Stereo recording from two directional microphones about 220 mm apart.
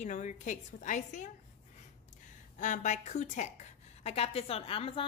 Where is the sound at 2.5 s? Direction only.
35° left (ahead or behind).